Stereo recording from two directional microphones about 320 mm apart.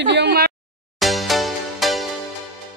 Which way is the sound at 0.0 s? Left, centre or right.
Right.